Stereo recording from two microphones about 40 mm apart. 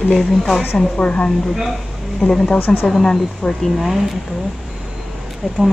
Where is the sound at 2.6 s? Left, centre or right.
Left.